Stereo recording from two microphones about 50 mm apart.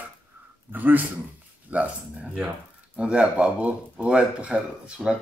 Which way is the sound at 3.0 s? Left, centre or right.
Right.